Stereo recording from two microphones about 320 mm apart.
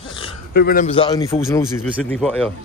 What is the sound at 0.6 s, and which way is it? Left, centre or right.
A man's voice, left.